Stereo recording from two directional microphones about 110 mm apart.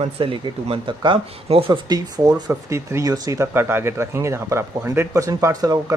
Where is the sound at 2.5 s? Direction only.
25° right (ahead or behind).